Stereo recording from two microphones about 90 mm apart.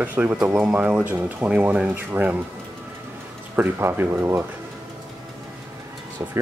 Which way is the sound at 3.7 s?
25° right (ahead or behind).